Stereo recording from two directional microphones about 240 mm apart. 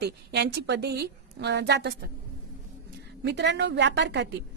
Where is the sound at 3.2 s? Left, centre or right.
Right.